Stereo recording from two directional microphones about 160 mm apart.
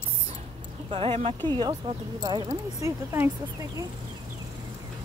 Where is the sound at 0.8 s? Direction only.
35° right (ahead or behind); by 3.8 s 20° right (ahead or behind).